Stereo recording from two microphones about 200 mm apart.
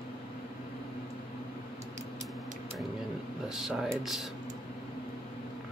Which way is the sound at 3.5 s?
Centre (ahead or behind).